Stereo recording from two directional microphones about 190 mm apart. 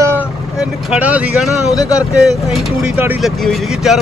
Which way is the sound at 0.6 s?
5° right (ahead or behind).